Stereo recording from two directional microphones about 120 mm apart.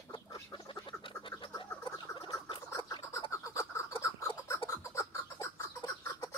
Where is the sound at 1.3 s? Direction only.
25° left (ahead or behind).